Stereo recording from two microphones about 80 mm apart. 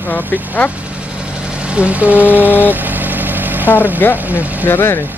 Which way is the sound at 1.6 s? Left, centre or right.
Centre.